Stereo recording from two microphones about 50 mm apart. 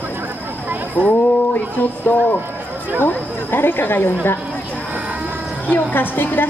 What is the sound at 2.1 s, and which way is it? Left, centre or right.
Speech, left.